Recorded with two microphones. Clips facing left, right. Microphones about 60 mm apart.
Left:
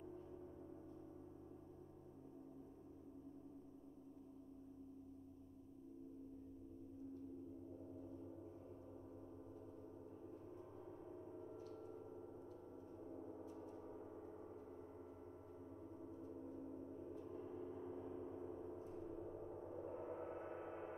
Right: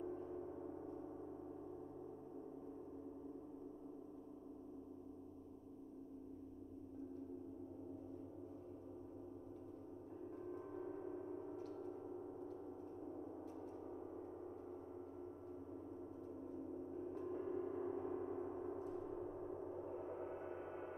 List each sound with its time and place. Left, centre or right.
0.0 s gong: right
10.3 s gong: right
13.0 s gong: centre
17.2 s gong: right
19.5 s gong: centre